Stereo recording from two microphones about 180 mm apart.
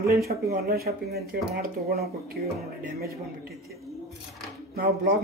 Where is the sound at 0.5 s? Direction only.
60° right (ahead or behind).